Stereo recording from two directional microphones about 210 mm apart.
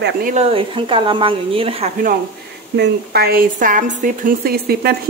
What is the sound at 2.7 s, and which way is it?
A woman's voice, 50° right (ahead or behind).